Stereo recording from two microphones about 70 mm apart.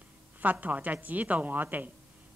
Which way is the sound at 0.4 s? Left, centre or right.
Right.